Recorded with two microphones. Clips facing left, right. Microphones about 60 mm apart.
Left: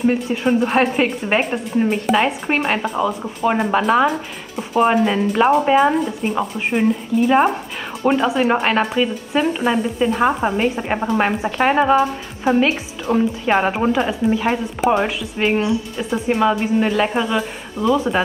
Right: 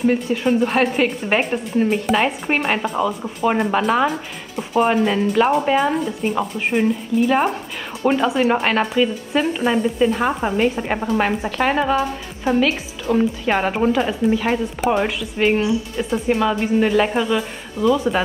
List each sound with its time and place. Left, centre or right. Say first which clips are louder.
0.3 s a woman's voice: left 1 dB; centre